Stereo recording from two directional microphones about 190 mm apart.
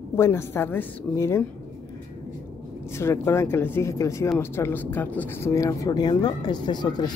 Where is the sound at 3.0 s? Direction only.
15° left (ahead or behind).